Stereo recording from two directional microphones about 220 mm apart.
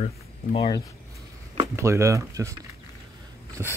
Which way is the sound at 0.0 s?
30° left (ahead or behind).